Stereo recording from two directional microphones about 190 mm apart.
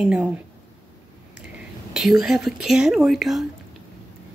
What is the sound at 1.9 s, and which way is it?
Speech, 5° right (ahead or behind).